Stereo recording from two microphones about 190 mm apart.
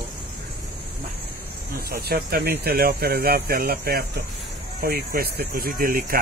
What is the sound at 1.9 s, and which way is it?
Speech, 55° right (ahead or behind).